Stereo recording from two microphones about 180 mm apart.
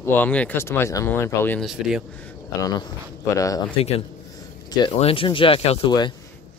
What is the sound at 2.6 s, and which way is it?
Speech, 25° left (ahead or behind).